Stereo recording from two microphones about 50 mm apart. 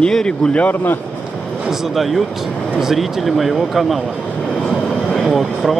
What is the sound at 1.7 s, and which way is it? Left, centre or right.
Speech, centre.